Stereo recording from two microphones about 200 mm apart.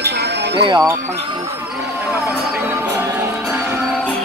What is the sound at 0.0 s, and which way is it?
Music, 55° right (ahead or behind).